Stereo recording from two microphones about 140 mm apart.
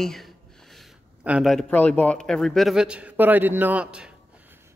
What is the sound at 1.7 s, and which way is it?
Speech, 10° left (ahead or behind).